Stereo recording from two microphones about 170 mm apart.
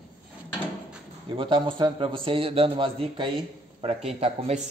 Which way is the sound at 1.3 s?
30° right (ahead or behind).